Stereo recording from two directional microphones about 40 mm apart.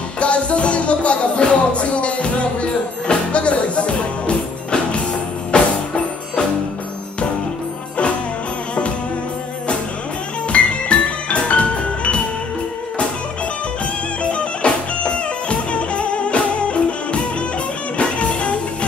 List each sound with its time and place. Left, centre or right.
0.2 s music: left
10.5 s music: left
14.2 s music: left